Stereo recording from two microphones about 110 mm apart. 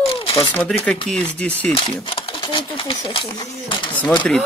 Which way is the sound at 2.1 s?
50° left (ahead or behind).